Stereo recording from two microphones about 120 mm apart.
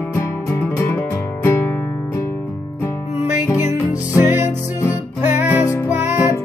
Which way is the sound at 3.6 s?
80° left.